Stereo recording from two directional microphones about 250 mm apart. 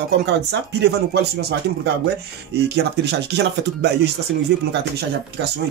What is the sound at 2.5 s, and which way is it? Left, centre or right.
Speech, right.